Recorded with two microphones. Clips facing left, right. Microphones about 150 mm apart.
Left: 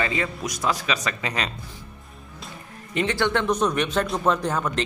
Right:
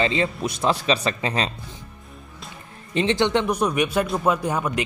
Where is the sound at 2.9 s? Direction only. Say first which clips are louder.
Right 3 dB; 25° right (ahead or behind).